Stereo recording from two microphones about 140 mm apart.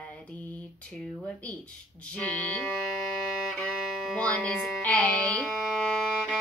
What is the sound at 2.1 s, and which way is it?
Music, 10° left (ahead or behind).